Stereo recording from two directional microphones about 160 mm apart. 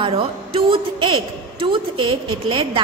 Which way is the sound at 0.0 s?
35° right (ahead or behind).